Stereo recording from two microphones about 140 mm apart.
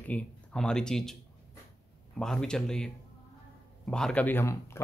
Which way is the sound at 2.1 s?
5° left (ahead or behind).